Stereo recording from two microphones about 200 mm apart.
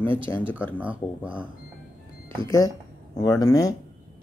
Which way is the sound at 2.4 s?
15° left (ahead or behind).